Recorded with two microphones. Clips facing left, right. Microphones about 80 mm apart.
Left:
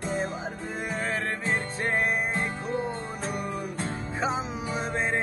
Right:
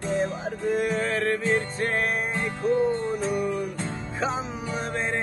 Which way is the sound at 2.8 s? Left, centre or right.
Centre.